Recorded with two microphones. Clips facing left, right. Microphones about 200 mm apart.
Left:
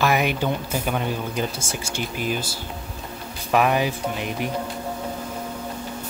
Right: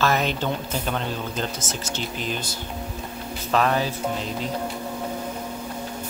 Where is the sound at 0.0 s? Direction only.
10° left (ahead or behind).